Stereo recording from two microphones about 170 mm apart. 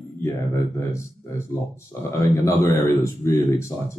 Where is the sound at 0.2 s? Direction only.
15° left (ahead or behind).